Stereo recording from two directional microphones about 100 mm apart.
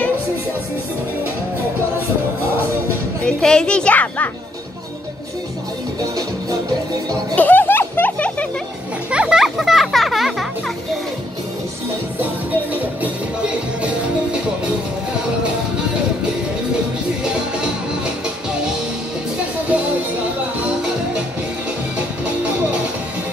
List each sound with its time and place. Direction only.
3.3 s a woman's voice: 5° left (ahead or behind)
7.3 s music: 20° left (ahead or behind)
9.1 s music: 10° right (ahead or behind)
12.2 s music: 15° right (ahead or behind)
20.5 s music: 10° right (ahead or behind)